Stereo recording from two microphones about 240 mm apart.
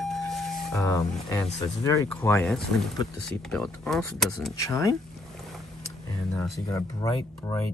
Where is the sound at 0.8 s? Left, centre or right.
Centre.